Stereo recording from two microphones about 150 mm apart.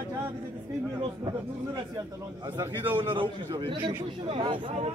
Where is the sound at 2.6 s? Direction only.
10° right (ahead or behind).